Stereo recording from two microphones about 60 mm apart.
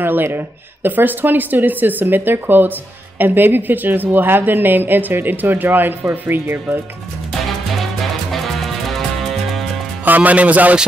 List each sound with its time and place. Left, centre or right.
0.0 s speech: right
8.0 s music: centre
10.0 s speech: right